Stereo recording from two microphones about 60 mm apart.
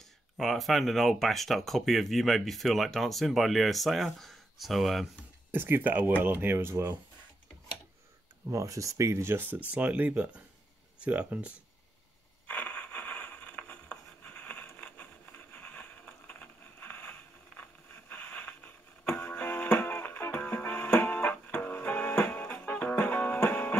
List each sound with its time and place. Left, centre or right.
0.4 s speech: centre
5.5 s speech: right
6.7 s speech: right
8.5 s speech: right
12.4 s a sound: left
14.2 s vehicle: left
15.9 s a sound: left
19.7 s music: left